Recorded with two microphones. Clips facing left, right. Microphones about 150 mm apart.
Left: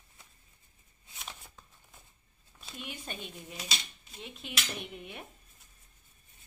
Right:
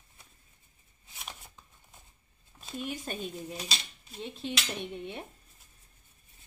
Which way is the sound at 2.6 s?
40° right (ahead or behind).